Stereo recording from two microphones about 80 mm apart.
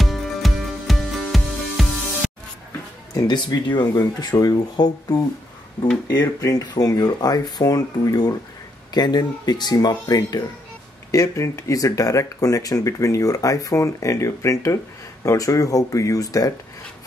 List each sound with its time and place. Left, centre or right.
0.0 s music: centre
3.2 s speech: left
11.1 s speech: left